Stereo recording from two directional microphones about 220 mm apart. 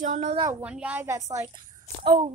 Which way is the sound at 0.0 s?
30° right (ahead or behind).